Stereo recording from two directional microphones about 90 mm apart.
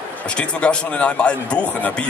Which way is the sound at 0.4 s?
10° left (ahead or behind).